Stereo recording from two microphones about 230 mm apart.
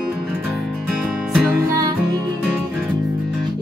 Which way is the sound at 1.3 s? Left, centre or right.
Centre.